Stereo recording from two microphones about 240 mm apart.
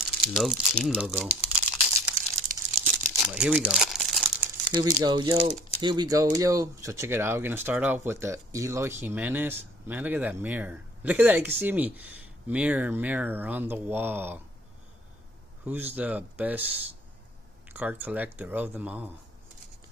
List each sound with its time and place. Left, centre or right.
0.2 s crumpling: centre
5.0 s speech: centre
15.6 s speech: centre